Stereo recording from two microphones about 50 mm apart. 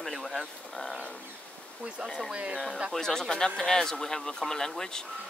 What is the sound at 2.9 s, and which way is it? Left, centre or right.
Speech, centre.